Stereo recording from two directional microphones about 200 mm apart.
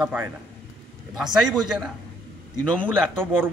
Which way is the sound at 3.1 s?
10° right (ahead or behind).